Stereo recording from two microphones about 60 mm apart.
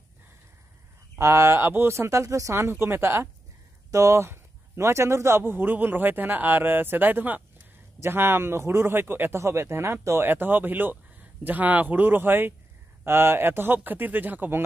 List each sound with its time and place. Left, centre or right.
1.2 s speech: right
2.5 s speech: right
3.9 s speech: right
5.4 s speech: right
8.0 s speech: right
9.4 s speech: right